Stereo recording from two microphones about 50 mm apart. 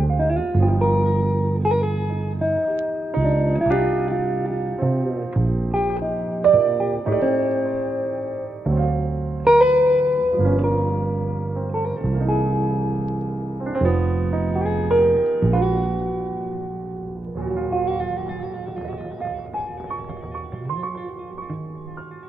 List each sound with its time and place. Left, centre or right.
0.0 s music: centre
2.0 s music: centre
2.6 s music: right
3.2 s music: centre
6.6 s music: centre; by 10.4 s right
10.4 s music: centre
17.5 s music: centre